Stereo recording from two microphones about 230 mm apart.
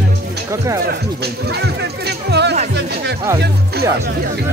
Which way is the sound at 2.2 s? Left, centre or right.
Right.